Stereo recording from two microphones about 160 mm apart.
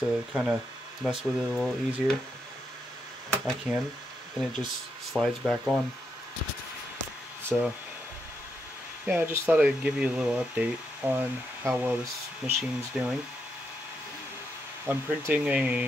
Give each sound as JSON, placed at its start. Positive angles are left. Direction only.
{"t": 0.3, "sound": "speech", "side_deg": -5}
{"t": 3.4, "sound": "speech", "side_deg": -5}
{"t": 5.1, "sound": "speech", "side_deg": 0}
{"t": 7.5, "sound": "speech", "side_deg": 0}
{"t": 9.0, "sound": "speech", "side_deg": -10}
{"t": 14.9, "sound": "speech", "side_deg": -10}